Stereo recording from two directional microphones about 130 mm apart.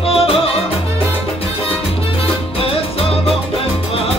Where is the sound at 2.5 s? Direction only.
45° left (ahead or behind).